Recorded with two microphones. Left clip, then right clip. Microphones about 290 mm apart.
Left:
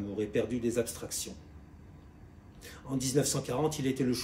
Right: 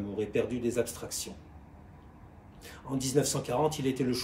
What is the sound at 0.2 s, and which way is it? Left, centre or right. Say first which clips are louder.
Speech: right 1 dB; centre.